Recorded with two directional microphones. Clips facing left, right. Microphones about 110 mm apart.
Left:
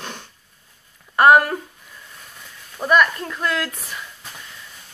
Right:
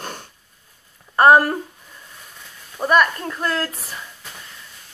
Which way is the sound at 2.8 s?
35° right (ahead or behind).